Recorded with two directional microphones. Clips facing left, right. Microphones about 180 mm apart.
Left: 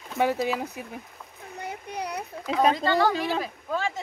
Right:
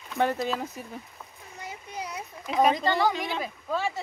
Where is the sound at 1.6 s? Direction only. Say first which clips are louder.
Left 4 dB; 60° left (ahead or behind).